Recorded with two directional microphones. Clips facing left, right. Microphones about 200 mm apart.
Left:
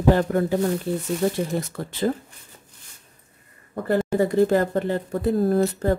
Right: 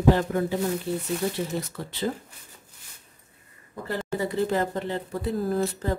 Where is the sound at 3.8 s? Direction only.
50° left (ahead or behind).